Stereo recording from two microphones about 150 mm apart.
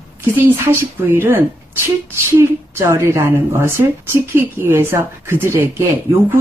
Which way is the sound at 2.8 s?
20° right (ahead or behind).